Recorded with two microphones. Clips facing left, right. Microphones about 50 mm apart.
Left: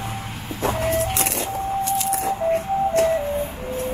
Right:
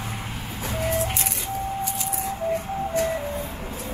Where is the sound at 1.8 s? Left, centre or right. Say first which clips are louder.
Left 7 dB; left.